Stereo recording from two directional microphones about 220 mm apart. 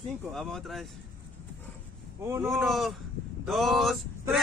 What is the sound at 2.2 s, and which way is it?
Speech, 10° right (ahead or behind).